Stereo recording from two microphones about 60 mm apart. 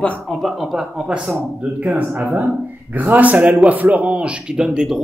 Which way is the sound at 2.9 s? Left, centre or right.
Right.